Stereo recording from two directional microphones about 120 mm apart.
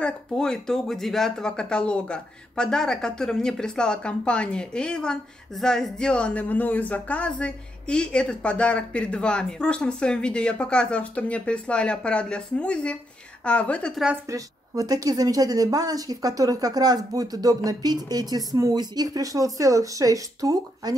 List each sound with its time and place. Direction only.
0.0 s speech: 5° left (ahead or behind)
14.3 s speech: 30° right (ahead or behind)